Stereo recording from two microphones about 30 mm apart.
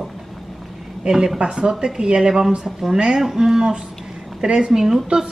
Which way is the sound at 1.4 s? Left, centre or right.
Right.